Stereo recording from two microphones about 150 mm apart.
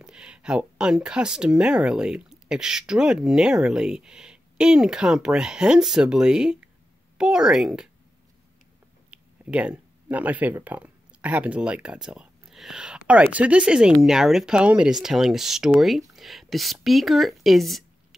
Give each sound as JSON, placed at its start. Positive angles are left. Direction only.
{"t": 0.0, "sound": "speech", "side_deg": -5}
{"t": 9.1, "sound": "speech", "side_deg": -10}